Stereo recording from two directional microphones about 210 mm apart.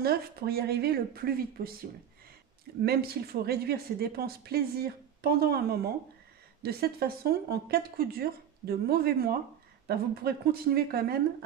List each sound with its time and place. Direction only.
0.0 s a woman's voice: 45° right (ahead or behind)
2.8 s a woman's voice: 50° right (ahead or behind)